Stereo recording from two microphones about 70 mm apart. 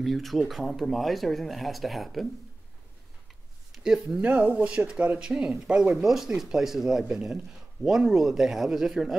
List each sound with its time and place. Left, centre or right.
0.0 s speech: centre
3.8 s speech: centre
4.2 s speech: right; by 9.1 s centre